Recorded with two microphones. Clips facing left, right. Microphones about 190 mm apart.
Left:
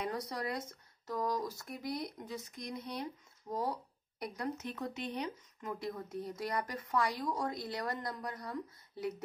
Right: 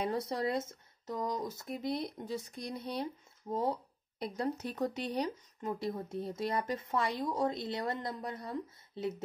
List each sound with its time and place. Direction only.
0.0 s speech: 25° right (ahead or behind)